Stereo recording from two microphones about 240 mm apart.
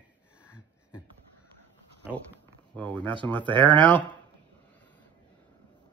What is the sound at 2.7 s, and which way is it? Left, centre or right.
Speech, centre.